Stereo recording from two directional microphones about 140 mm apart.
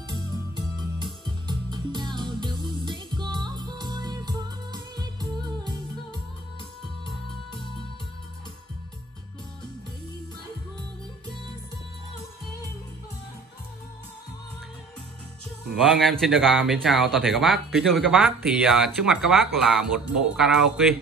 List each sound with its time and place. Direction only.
0.1 s music: 30° right (ahead or behind)
15.7 s speech: centre (ahead or behind)